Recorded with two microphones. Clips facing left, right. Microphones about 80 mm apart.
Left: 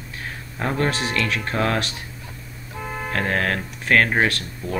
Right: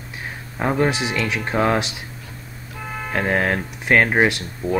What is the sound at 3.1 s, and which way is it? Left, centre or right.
Speech, centre.